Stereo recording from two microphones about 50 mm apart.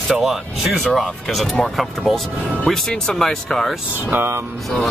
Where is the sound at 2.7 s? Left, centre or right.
Centre.